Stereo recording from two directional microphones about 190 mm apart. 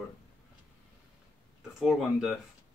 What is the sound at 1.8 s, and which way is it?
Speech, centre (ahead or behind).